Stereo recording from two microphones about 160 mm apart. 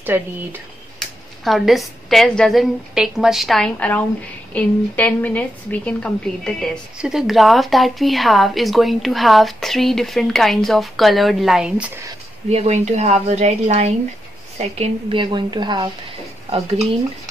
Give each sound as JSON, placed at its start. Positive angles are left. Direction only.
{"t": 0.0, "sound": "speech", "side_deg": -10}
{"t": 1.4, "sound": "a woman's voice", "side_deg": 0}
{"t": 12.4, "sound": "a woman's voice", "side_deg": -45}